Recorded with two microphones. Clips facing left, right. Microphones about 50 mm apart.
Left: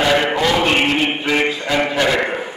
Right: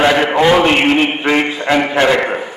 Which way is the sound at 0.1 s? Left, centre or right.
Right.